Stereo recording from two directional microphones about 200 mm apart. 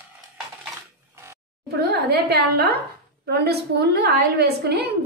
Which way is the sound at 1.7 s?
50° right (ahead or behind).